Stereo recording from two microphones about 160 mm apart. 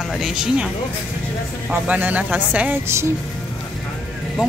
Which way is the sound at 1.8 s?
10° right (ahead or behind).